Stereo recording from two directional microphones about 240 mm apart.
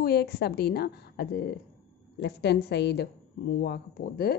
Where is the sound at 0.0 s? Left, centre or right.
Left.